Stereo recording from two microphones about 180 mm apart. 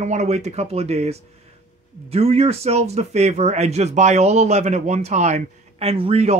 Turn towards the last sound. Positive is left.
turn(degrees=-35)  # may be behind; listen again after turning